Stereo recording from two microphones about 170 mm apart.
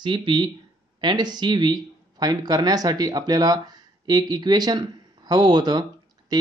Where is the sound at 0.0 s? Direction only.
30° right (ahead or behind).